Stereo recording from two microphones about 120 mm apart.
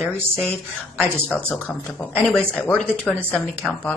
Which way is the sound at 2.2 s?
5° left (ahead or behind).